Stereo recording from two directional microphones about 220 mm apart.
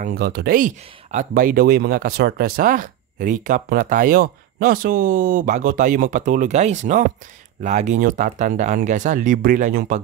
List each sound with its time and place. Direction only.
0.0 s speech: 45° right (ahead or behind)